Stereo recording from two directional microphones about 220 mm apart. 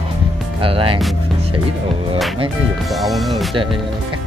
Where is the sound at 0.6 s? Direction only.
25° right (ahead or behind).